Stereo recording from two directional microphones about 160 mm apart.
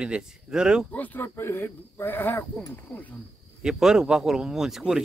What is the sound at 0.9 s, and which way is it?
Speech, 10° left (ahead or behind).